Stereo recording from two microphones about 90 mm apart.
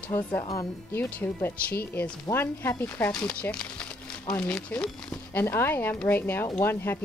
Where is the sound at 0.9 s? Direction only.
25° left (ahead or behind).